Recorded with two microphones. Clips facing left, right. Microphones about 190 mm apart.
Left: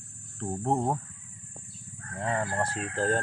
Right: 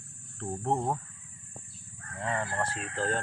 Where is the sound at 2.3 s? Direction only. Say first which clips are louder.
Left 3 dB; 15° left (ahead or behind).